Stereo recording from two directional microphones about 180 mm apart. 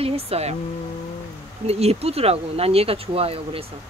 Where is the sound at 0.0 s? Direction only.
35° right (ahead or behind).